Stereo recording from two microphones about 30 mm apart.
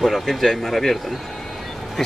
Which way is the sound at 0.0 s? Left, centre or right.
Centre.